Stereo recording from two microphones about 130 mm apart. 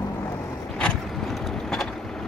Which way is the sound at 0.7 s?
5° left (ahead or behind).